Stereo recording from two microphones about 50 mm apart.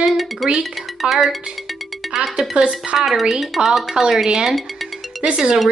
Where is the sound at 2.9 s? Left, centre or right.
Centre.